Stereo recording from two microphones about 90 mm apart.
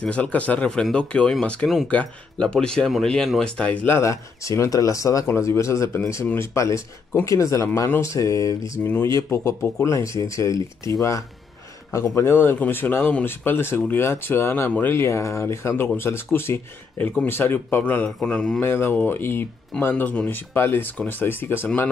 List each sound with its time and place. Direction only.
0.0 s speech: 15° left (ahead or behind)
3.8 s speech: 30° left (ahead or behind)
8.8 s speech: 25° left (ahead or behind); by 18.6 s 10° left (ahead or behind)
18.6 s speech: 25° left (ahead or behind)